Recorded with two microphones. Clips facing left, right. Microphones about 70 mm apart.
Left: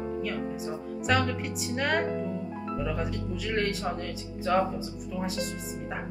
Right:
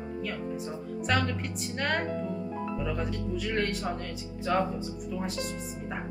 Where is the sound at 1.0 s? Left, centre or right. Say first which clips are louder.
Left 2 dB; centre.